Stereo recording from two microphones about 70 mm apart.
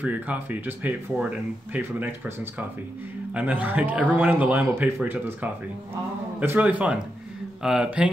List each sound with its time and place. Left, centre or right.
0.0 s speech: right
3.3 s speech: right
4.7 s speech: right
6.6 s speech: centre